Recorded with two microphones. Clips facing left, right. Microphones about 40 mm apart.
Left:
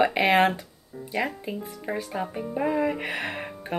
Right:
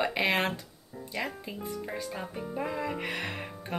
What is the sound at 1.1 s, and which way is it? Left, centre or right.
Speech, left.